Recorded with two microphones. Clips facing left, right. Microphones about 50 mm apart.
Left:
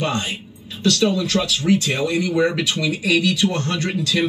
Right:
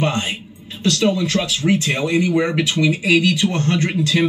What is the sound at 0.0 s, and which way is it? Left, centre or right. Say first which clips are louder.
Speech: right 2 dB; right.